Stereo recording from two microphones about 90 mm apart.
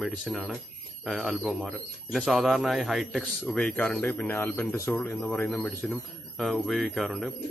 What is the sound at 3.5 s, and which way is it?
Speech, 15° left (ahead or behind).